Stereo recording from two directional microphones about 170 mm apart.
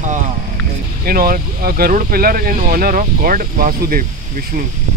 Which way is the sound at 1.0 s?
60° right (ahead or behind).